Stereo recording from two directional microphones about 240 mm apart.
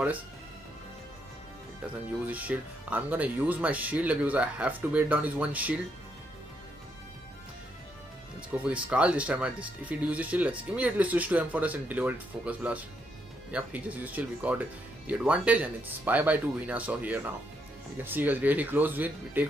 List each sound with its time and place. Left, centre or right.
2.1 s speech: centre
8.6 s speech: centre